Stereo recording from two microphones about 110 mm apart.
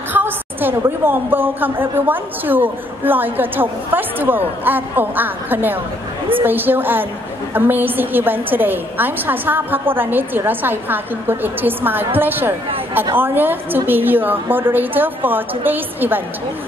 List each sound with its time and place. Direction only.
0.1 s a woman's voice: 20° right (ahead or behind)